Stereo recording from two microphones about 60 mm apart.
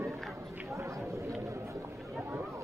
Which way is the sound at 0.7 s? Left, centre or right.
Right.